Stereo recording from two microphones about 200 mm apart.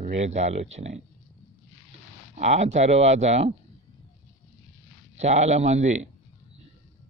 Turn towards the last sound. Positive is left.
turn(degrees=-35)  # may be behind; listen again after turning